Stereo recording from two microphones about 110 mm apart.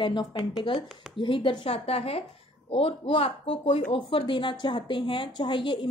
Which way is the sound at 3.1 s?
55° left (ahead or behind).